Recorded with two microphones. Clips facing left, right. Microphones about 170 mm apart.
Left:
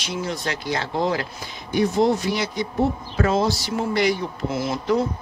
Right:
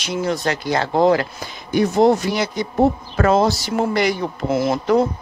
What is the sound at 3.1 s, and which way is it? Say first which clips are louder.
Speech: right 5 dB; 65° right (ahead or behind).